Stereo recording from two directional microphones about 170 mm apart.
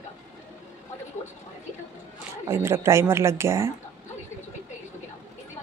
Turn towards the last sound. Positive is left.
turn(degrees=-15)  # may be behind; listen again after turning